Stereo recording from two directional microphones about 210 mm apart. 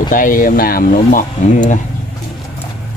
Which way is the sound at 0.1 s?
40° left (ahead or behind).